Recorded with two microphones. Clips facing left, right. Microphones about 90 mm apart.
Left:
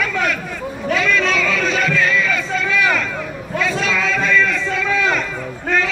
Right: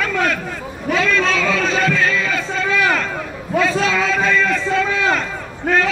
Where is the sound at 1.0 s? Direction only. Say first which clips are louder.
Right 1 dB; 35° right (ahead or behind).